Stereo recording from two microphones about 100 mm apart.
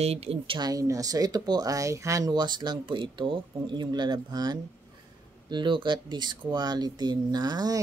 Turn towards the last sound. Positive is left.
turn(degrees=-40)  # may be behind; listen again after turning